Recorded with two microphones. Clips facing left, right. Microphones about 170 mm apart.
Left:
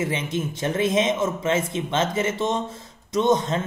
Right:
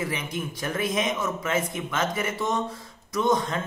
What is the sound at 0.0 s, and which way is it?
Speech, 25° left (ahead or behind).